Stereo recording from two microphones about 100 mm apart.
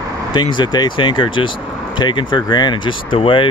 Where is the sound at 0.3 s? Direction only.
50° left (ahead or behind).